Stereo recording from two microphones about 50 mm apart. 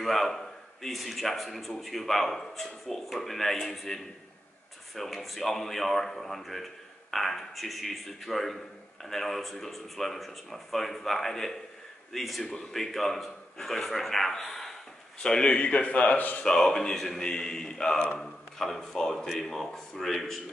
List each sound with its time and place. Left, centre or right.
0.0 s a man's voice: centre
12.4 s a man's voice: centre; by 16.4 s left
16.4 s a man's voice: centre